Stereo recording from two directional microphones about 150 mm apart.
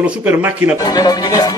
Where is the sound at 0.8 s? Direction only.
25° left (ahead or behind).